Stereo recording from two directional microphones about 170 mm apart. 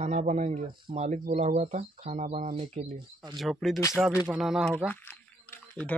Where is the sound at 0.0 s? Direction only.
45° right (ahead or behind).